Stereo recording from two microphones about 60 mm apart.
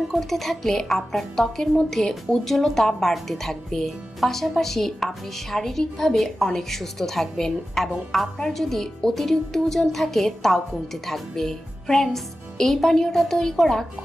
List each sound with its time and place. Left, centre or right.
0.1 s a woman's voice: centre